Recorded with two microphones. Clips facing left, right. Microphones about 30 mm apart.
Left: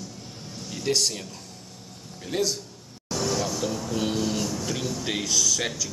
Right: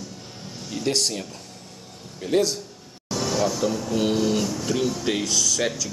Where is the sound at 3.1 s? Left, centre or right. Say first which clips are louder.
Right 3 dB; centre.